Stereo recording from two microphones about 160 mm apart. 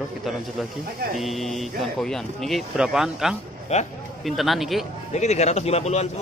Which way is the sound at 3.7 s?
45° left (ahead or behind).